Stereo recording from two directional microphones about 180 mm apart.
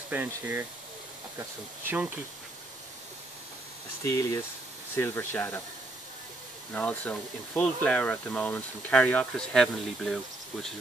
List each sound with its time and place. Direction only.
0.1 s speech: 10° right (ahead or behind)
4.0 s speech: 15° left (ahead or behind)
6.7 s speech: 10° left (ahead or behind)